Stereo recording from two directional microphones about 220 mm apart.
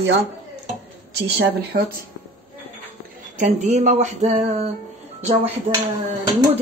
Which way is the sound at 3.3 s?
35° right (ahead or behind).